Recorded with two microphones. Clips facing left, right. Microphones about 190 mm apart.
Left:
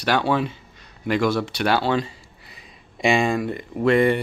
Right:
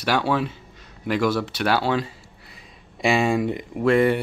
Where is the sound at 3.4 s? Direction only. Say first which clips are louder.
Right 2 dB; 15° right (ahead or behind).